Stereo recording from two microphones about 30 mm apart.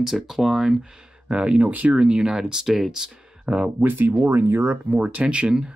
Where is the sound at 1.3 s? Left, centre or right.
Right.